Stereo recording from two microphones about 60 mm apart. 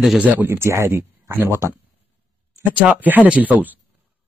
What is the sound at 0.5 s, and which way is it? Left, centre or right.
Speech, right.